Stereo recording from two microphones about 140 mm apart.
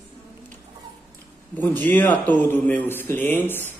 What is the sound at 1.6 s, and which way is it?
Speech, 15° left (ahead or behind).